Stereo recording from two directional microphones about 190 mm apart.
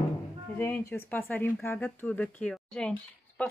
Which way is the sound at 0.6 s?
10° left (ahead or behind).